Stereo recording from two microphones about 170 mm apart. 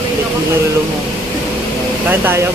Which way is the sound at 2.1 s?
10° right (ahead or behind).